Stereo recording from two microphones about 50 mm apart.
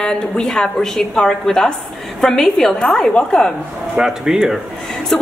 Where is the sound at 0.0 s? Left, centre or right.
Centre.